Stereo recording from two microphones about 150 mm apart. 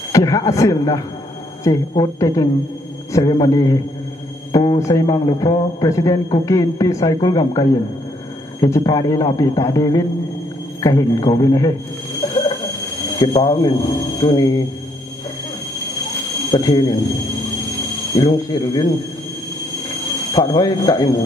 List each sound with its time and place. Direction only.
0.1 s speech: 20° left (ahead or behind)
12.2 s a sound: 20° left (ahead or behind)
16.4 s speech: 25° left (ahead or behind)
18.1 s speech: 25° left (ahead or behind)
20.3 s speech: 25° left (ahead or behind)